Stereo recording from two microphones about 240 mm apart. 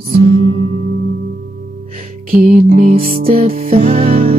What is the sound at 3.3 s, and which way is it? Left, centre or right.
Music, right.